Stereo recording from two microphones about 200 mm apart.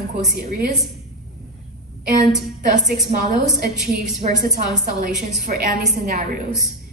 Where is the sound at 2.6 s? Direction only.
40° right (ahead or behind).